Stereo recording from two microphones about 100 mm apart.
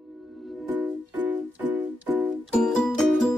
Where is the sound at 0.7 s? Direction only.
20° right (ahead or behind).